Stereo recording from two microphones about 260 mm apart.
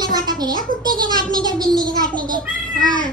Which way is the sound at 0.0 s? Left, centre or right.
Centre.